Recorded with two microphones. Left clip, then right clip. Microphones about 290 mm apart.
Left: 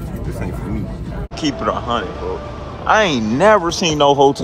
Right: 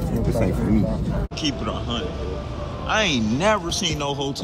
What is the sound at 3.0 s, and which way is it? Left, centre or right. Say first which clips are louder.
Speech: left 8 dB; centre.